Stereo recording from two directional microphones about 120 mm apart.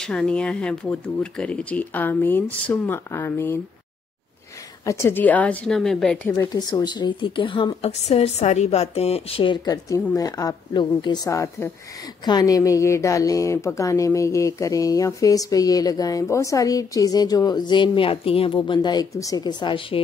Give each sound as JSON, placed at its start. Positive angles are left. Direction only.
{"t": 0.0, "sound": "speech", "side_deg": 5}
{"t": 4.8, "sound": "speech", "side_deg": 20}
{"t": 6.2, "sound": "speech", "side_deg": 20}
{"t": 6.5, "sound": "a woman's voice", "side_deg": 35}
{"t": 9.8, "sound": "a woman's voice", "side_deg": 30}
{"t": 11.2, "sound": "speech", "side_deg": 25}